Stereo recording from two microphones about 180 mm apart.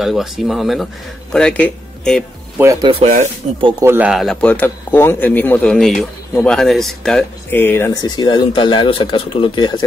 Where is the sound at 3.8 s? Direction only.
10° right (ahead or behind).